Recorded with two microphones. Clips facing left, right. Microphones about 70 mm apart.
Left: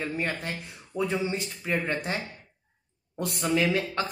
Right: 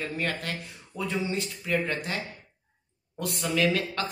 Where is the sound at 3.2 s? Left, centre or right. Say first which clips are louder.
Left 1 dB; left.